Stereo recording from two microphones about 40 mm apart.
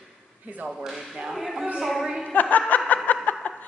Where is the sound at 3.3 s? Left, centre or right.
Left.